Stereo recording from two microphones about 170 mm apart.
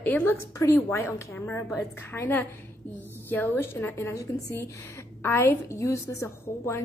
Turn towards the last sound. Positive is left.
turn(degrees=15)  # may be behind; listen again after turning